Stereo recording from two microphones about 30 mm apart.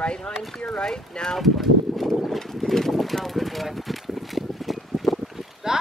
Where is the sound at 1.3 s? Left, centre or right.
Centre.